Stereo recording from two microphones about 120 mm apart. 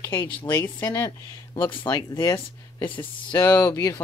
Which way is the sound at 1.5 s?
45° left (ahead or behind).